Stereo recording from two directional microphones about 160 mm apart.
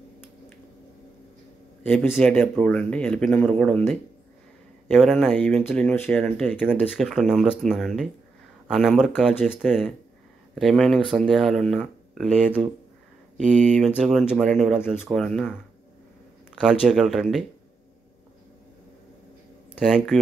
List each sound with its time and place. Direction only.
1.8 s a man's voice: 10° left (ahead or behind)
6.2 s speech: centre (ahead or behind)
13.4 s speech: 50° right (ahead or behind)
13.7 s speech: centre (ahead or behind)
16.5 s speech: 5° right (ahead or behind)
19.8 s speech: centre (ahead or behind)